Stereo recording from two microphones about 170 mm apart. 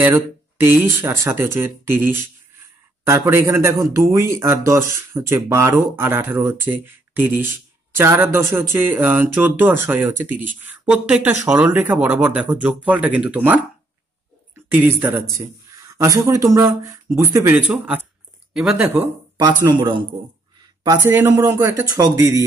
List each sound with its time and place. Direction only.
0.0 s speech: 15° right (ahead or behind)
19.4 s speech: 25° right (ahead or behind)
21.1 s speech: 15° right (ahead or behind)